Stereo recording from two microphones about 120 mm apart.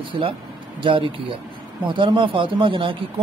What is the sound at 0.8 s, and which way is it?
Speech, 45° right (ahead or behind).